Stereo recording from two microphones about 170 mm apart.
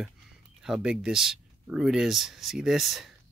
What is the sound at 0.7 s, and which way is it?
Speech, 5° right (ahead or behind).